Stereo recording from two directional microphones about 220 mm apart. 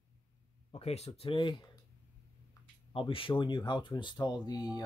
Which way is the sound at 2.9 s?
25° left (ahead or behind).